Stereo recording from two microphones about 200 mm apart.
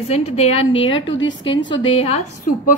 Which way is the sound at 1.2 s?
70° left (ahead or behind).